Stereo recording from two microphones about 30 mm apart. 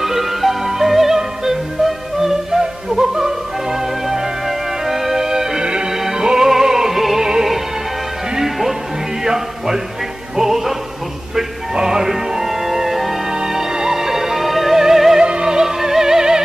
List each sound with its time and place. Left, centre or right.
0.0 s music: centre
5.6 s music: right
9.2 s music: centre
11.7 s music: centre
13.3 s music: centre
15.2 s music: right